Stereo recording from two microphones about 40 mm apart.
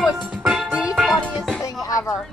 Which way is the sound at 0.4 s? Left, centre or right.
Centre.